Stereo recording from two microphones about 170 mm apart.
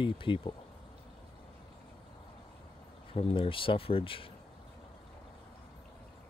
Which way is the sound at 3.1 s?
35° left (ahead or behind).